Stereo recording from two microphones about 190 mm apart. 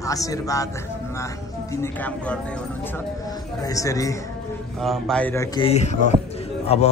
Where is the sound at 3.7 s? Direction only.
15° left (ahead or behind).